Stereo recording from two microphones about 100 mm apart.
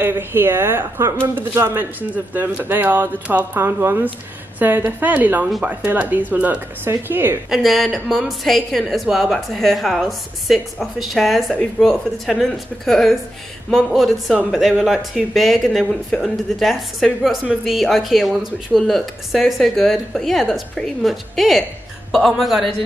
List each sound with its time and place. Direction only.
0.0 s speech: 20° right (ahead or behind)
7.4 s a woman's voice: centre (ahead or behind)